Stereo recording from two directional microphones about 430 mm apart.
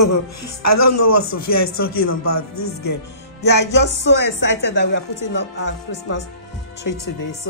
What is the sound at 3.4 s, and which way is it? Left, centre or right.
Music, left.